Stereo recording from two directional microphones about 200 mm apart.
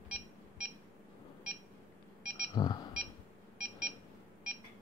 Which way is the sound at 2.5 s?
20° left (ahead or behind).